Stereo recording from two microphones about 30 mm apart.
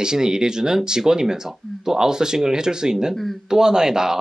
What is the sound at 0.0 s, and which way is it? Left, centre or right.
Speech, right.